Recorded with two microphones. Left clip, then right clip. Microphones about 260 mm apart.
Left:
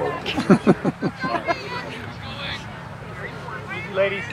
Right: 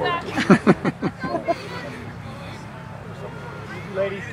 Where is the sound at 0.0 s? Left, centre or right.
Centre.